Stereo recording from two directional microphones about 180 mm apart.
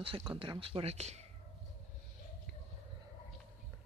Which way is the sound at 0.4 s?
30° right (ahead or behind).